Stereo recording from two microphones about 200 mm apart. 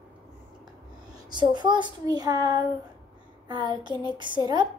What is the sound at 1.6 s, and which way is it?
A woman's voice, 25° right (ahead or behind).